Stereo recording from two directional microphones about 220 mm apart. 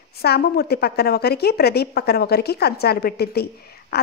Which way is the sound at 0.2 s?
45° left (ahead or behind).